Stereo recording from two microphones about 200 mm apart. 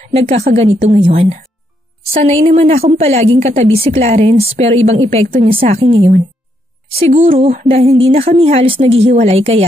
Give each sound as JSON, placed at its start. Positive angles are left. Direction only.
{"t": 0.0, "sound": "a woman's voice", "side_deg": -30}